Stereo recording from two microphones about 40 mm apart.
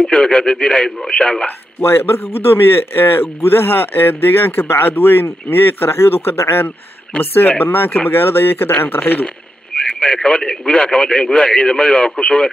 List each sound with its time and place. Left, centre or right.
0.0 s speech: left
1.8 s speech: left
7.2 s speech: left
8.1 s speech: left
9.8 s speech: left